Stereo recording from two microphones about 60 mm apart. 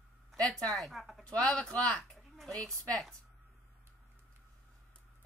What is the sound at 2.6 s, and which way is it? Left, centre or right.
Speech, centre.